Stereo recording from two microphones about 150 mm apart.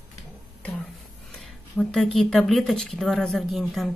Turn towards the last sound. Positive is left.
turn(degrees=0)  # may be behind; listen again after turning